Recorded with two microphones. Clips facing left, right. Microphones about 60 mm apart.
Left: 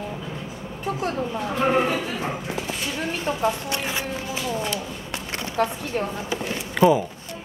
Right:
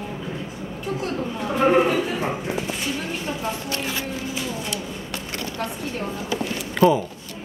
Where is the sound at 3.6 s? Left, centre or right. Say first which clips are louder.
Even; left.